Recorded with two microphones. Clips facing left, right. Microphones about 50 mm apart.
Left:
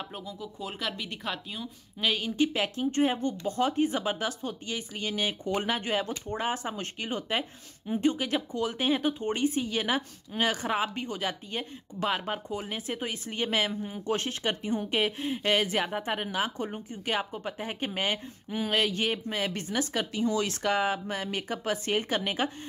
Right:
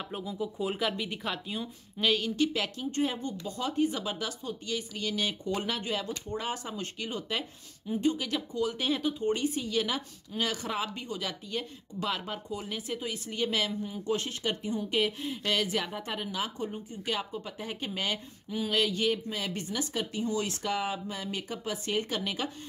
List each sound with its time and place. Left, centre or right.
0.0 s speech: centre
2.3 s speech: left
4.6 s speech: left
5.8 s speech: left
8.7 s speech: left
20.4 s speech: left